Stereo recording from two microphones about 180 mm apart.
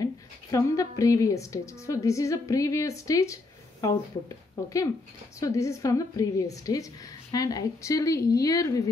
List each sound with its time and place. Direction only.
0.0 s a woman's voice: 20° left (ahead or behind)
5.4 s a woman's voice: 15° left (ahead or behind)